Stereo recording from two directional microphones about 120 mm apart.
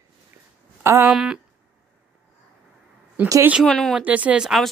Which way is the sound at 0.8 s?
25° right (ahead or behind).